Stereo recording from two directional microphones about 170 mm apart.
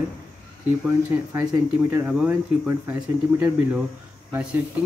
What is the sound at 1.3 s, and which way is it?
Speech, 20° right (ahead or behind).